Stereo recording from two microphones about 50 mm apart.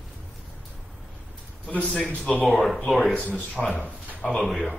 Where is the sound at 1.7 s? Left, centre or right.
Left.